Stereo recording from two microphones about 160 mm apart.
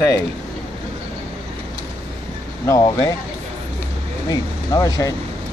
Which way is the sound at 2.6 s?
20° left (ahead or behind).